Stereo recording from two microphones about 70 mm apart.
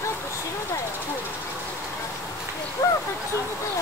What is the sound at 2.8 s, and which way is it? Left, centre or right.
Speech, left.